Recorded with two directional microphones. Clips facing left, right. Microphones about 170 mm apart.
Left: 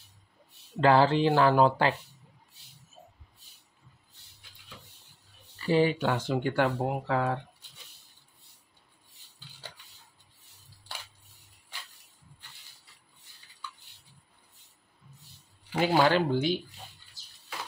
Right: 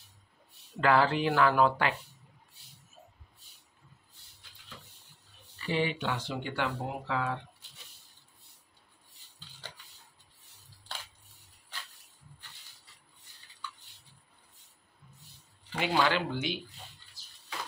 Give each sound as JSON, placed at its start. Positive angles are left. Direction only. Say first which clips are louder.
{"t": 0.7, "sound": "speech", "louder": "left 4 dB", "side_deg": 30}
{"t": 5.6, "sound": "speech", "louder": "left 7 dB", "side_deg": 40}
{"t": 15.8, "sound": "speech", "louder": "left 5 dB", "side_deg": 40}